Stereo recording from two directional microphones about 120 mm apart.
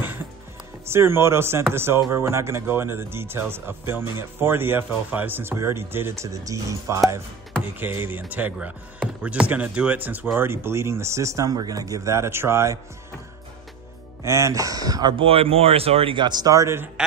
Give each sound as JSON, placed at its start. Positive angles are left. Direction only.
{"t": 0.8, "sound": "speech", "side_deg": -20}
{"t": 14.2, "sound": "speech", "side_deg": -25}
{"t": 15.1, "sound": "speech", "side_deg": -50}